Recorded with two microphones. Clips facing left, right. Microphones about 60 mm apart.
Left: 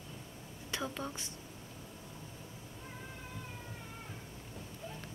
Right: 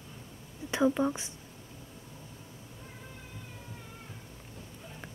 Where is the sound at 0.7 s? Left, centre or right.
Right.